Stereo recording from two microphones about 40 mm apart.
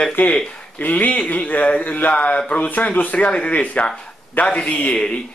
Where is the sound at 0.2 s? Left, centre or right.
Left.